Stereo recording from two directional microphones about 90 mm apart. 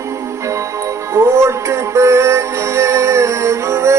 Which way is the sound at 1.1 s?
30° right (ahead or behind).